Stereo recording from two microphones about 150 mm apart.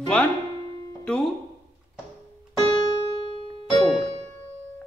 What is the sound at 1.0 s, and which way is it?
Speech, 5° left (ahead or behind).